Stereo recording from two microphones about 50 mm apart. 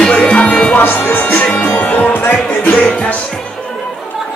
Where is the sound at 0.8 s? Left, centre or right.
Left.